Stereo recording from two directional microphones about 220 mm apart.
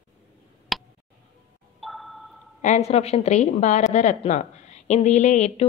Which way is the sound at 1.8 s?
Centre (ahead or behind).